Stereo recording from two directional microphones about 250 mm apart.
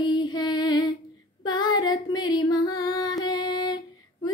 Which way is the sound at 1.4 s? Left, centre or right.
Centre.